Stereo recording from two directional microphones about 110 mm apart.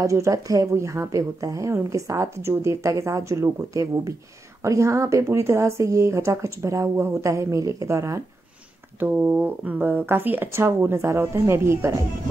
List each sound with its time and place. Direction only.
0.0 s speech: 30° right (ahead or behind)
9.0 s speech: 15° right (ahead or behind)